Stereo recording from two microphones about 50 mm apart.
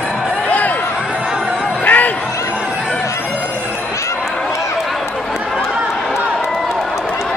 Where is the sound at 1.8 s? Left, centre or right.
Left.